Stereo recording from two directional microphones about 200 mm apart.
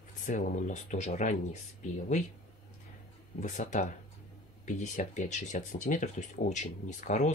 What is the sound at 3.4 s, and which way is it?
Speech, 40° left (ahead or behind).